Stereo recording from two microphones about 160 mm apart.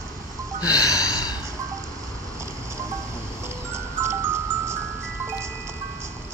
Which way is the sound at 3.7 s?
15° right (ahead or behind).